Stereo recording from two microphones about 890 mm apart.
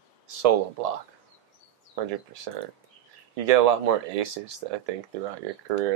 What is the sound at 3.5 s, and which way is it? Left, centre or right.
Speech, right.